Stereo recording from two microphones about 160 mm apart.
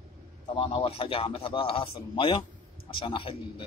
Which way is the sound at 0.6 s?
35° left (ahead or behind).